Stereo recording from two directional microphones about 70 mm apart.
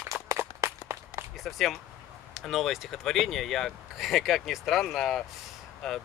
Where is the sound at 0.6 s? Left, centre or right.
Right.